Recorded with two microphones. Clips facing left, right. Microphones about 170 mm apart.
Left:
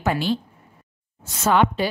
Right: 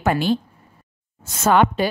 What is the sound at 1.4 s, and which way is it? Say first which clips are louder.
Speech: right 2 dB; 50° right (ahead or behind).